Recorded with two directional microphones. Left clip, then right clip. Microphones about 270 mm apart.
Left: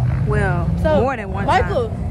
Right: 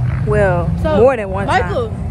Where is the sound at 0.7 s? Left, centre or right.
Left.